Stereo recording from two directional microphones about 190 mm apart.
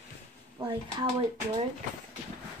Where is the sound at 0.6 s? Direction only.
25° right (ahead or behind).